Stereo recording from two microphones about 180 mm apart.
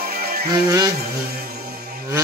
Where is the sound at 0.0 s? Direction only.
55° right (ahead or behind).